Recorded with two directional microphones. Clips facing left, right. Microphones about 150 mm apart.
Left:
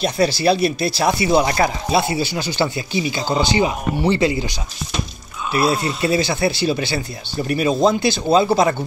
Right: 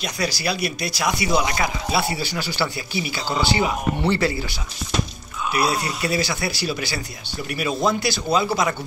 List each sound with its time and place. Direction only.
0.0 s speech: 25° left (ahead or behind)
1.5 s speech: 40° left (ahead or behind)
2.0 s speech: 20° left (ahead or behind)